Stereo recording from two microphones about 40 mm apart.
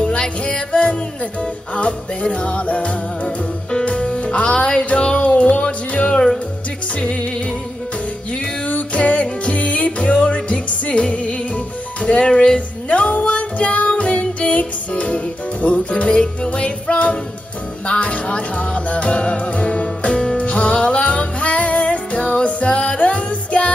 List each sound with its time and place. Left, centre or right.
0.2 s music: left
6.0 s music: centre
7.0 s music: left
8.6 s music: left